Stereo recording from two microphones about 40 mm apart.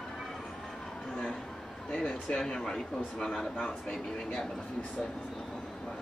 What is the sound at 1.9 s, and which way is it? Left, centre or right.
Speech, left.